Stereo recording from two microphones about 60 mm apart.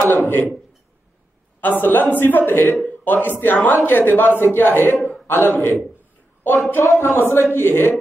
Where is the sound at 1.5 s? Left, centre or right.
Left.